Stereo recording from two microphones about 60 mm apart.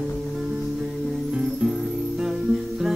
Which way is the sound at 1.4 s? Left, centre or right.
Centre.